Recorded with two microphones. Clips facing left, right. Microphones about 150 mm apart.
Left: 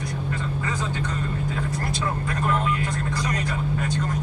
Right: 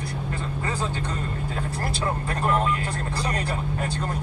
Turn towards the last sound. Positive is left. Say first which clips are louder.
# left 2 dB
turn(degrees=-30)  # may be behind; listen again after turning